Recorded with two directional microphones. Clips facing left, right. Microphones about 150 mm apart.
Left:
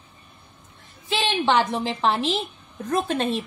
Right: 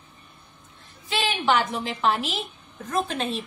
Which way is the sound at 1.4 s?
30° left (ahead or behind).